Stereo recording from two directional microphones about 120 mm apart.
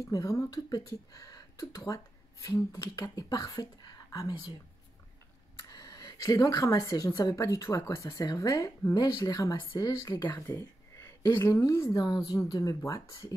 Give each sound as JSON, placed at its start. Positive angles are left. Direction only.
{"t": 0.0, "sound": "a woman's voice", "side_deg": 30}
{"t": 5.6, "sound": "a sound", "side_deg": 35}
{"t": 7.2, "sound": "a woman's voice", "side_deg": 25}